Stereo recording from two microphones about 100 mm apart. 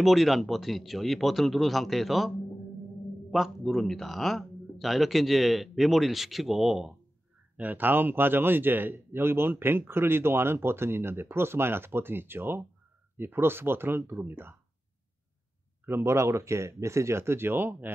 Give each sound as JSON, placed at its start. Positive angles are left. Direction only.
{"t": 0.0, "sound": "speech", "side_deg": 0}
{"t": 7.5, "sound": "a man's voice", "side_deg": -15}
{"t": 15.8, "sound": "a man's voice", "side_deg": -25}